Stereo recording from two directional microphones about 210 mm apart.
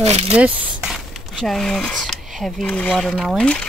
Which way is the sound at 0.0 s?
30° right (ahead or behind).